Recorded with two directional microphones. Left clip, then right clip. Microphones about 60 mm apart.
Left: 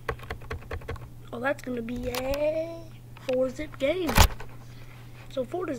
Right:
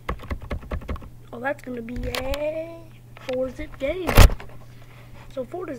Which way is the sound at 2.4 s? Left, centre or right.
Centre.